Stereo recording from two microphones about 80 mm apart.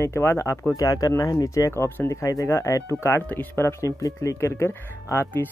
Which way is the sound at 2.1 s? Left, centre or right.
Left.